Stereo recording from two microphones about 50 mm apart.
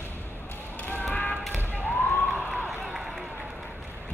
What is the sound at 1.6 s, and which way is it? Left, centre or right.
Police car, right.